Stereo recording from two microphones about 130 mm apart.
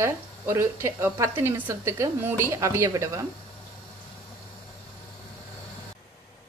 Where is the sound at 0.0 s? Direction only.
20° right (ahead or behind).